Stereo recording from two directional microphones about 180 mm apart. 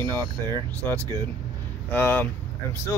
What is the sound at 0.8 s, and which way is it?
Speech, 15° left (ahead or behind).